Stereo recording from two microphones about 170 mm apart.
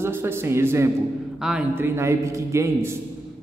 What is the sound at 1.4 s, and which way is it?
Speech, 5° right (ahead or behind).